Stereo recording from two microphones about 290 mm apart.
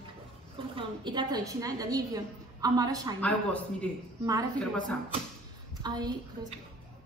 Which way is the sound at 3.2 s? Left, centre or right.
Centre.